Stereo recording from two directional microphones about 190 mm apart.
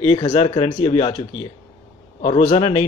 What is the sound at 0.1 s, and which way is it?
Speech, 30° left (ahead or behind).